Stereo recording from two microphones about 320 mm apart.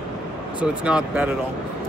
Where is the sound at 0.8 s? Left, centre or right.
Centre.